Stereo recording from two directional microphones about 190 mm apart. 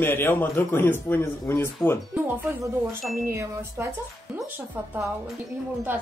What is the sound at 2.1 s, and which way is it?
Speech, 10° right (ahead or behind).